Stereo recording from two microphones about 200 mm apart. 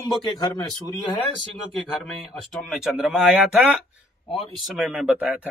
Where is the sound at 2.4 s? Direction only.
Centre (ahead or behind).